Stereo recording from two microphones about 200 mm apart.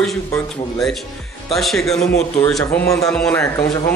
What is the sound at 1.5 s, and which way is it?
Speech, centre (ahead or behind).